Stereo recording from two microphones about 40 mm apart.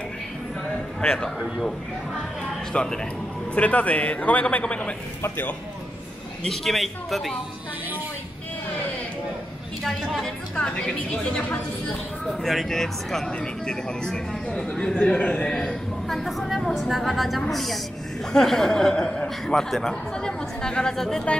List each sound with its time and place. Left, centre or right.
2.7 s speech: centre
3.5 s a man's voice: left
6.5 s speech: centre
10.2 s speech: centre
12.3 s speech: centre
12.6 s speech: centre
15.0 s speech: left
16.1 s a woman's voice: centre
19.9 s speech: centre